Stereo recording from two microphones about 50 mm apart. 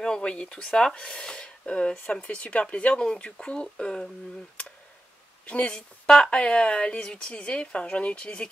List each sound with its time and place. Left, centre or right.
0.0 s speech: centre
2.2 s speech: left
3.3 s speech: centre
5.5 s speech: left